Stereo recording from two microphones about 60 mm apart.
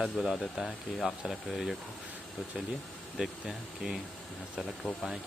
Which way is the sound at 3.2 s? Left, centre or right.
Centre.